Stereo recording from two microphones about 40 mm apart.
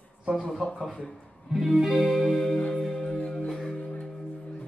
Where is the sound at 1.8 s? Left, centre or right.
Centre.